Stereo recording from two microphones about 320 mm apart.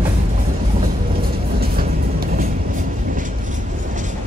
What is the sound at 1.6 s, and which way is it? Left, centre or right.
Train, right.